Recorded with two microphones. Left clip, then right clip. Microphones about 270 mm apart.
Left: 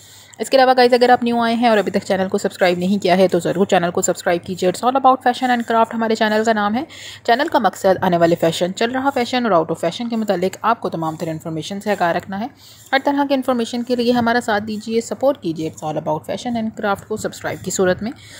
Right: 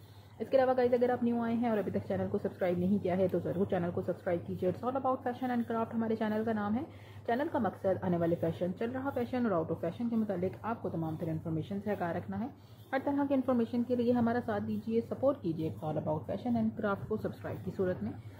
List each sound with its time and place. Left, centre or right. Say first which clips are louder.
0.4 s a woman's voice: left 16 dB; left